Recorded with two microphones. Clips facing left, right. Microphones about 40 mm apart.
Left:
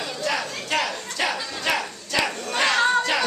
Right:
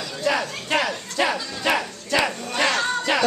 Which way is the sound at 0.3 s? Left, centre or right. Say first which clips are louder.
Right 4 dB; centre.